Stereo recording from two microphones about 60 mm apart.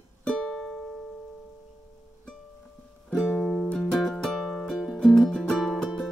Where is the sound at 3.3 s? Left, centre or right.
Centre.